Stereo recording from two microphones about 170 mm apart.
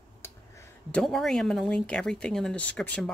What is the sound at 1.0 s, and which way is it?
Speech, centre (ahead or behind).